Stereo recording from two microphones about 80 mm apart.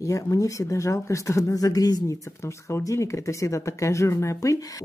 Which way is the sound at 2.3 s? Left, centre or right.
Left.